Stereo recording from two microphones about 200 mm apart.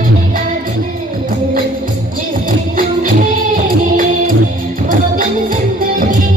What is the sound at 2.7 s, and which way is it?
Music, 45° right (ahead or behind).